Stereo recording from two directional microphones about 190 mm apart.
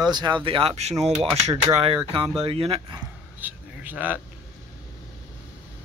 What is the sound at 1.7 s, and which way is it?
Speech, 30° right (ahead or behind).